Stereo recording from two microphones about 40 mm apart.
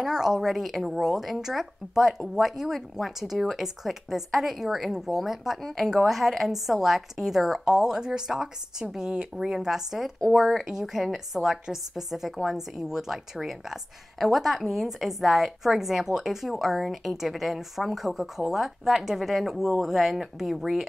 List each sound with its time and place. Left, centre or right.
0.0 s a woman's voice: centre